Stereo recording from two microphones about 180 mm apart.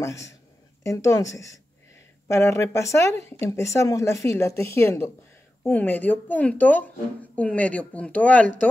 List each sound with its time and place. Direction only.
0.0 s speech: 15° left (ahead or behind)